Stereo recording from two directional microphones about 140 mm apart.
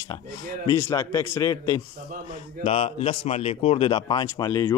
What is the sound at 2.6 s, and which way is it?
Speech, 45° left (ahead or behind).